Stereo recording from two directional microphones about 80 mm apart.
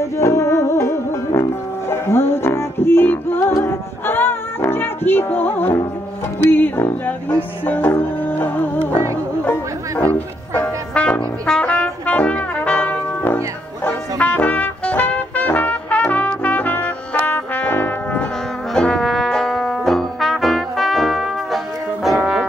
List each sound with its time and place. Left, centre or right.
0.0 s music: left
18.7 s trombone: centre
22.2 s brass instrument: centre